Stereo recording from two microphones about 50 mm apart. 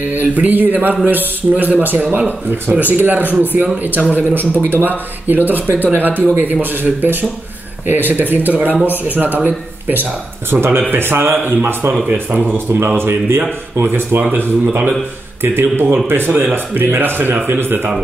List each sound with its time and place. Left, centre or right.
0.1 s a man's voice: right
10.5 s a man's voice: right
12.1 s speech: right
12.4 s speech: right
14.3 s a man's voice: right